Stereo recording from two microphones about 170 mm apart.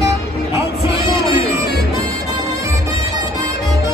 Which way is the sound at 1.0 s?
20° right (ahead or behind).